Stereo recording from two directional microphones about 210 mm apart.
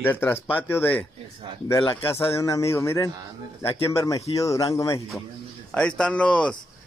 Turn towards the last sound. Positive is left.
turn(degrees=5)  # may be behind; listen again after turning